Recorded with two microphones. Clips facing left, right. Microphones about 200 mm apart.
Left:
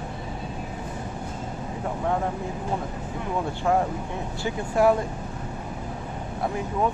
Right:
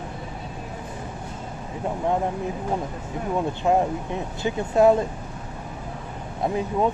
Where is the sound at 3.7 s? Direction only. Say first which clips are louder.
Right 2 dB; 20° right (ahead or behind).